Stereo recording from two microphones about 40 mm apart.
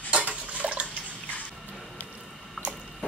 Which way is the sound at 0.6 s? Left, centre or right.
Right.